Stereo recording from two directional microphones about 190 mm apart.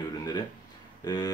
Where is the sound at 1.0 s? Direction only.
20° left (ahead or behind).